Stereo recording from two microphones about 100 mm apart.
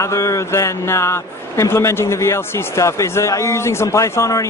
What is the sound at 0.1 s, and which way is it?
A man's voice, 30° left (ahead or behind).